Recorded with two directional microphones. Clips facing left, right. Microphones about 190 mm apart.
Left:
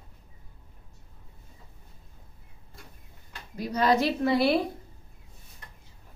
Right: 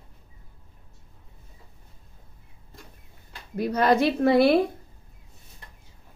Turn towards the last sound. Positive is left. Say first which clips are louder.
# right 5 dB
turn(degrees=-55)  # may be behind; listen again after turning